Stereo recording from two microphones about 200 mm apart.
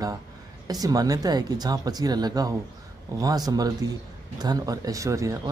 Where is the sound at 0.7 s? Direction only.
20° right (ahead or behind).